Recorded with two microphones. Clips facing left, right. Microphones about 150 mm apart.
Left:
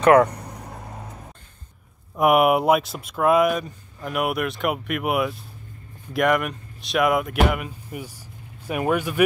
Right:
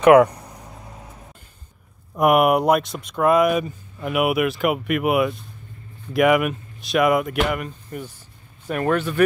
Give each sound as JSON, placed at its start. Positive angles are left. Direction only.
{"t": 0.0, "sound": "speech", "side_deg": -10}
{"t": 2.1, "sound": "speech", "side_deg": 0}